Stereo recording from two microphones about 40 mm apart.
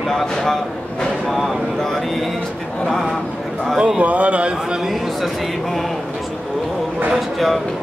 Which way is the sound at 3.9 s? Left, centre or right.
Right.